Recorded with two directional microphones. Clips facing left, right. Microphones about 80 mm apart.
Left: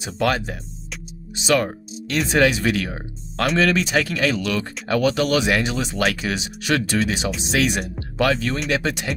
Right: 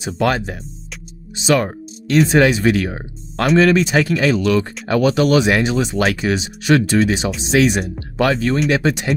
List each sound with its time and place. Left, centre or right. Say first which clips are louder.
0.0 s speech: right 3 dB; right